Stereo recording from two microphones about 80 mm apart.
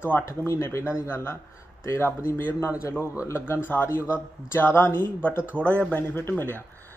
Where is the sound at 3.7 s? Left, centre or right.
Left.